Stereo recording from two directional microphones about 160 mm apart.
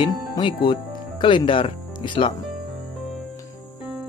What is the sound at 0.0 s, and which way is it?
Speech, 30° left (ahead or behind).